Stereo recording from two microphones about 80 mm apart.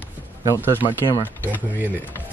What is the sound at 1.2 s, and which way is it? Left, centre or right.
Speech, right.